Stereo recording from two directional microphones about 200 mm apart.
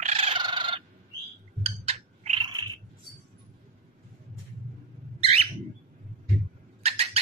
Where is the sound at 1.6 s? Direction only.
30° right (ahead or behind).